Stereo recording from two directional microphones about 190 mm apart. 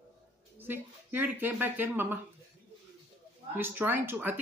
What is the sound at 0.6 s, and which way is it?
Speech, 10° right (ahead or behind).